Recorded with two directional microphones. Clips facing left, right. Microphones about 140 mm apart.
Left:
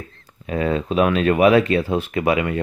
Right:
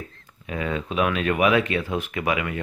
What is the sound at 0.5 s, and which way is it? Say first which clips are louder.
Speech: left 6 dB; 35° left (ahead or behind).